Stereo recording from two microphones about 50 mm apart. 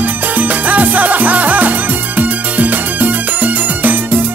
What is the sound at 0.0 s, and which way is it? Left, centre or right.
Music, right.